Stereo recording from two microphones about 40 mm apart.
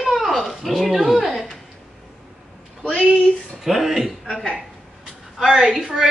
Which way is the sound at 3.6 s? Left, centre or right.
Centre.